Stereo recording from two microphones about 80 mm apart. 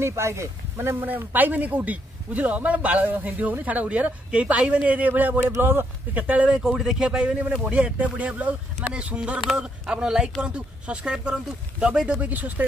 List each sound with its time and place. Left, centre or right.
0.0 s speech: right